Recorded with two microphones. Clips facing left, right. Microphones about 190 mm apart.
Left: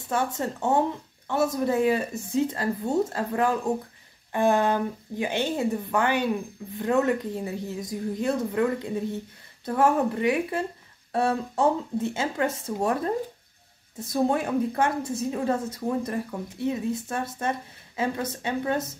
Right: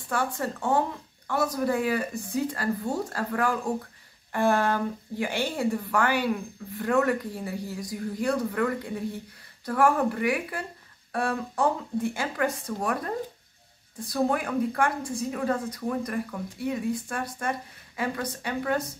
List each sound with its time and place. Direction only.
0.1 s a woman's voice: 20° left (ahead or behind)